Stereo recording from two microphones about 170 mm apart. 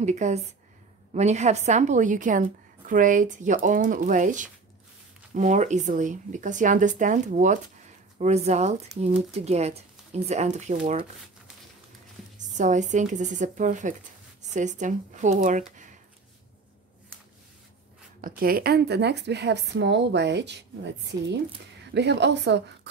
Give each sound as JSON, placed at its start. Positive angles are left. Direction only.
{"t": 0.0, "sound": "speech", "side_deg": -45}
{"t": 12.5, "sound": "speech", "side_deg": -45}
{"t": 18.2, "sound": "a woman's voice", "side_deg": -60}
{"t": 21.9, "sound": "a woman's voice", "side_deg": -90}